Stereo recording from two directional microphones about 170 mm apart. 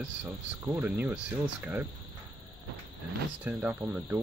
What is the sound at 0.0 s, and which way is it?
Speech, 10° right (ahead or behind).